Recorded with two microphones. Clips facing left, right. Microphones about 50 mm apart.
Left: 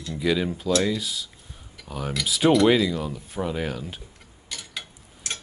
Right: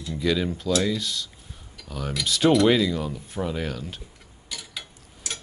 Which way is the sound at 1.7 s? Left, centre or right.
Centre.